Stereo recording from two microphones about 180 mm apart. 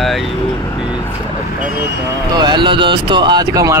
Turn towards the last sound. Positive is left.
turn(degrees=-20)  # may be behind; listen again after turning